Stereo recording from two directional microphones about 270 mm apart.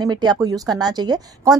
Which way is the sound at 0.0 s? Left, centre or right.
Centre.